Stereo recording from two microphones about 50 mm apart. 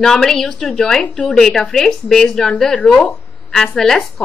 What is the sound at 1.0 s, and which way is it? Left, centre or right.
Speech, left.